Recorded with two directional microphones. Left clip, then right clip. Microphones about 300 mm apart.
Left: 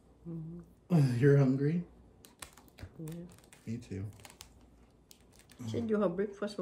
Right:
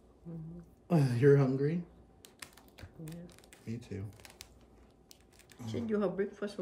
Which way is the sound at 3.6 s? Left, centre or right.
Centre.